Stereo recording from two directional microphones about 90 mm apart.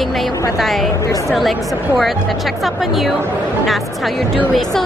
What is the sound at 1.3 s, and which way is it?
Speech, centre (ahead or behind).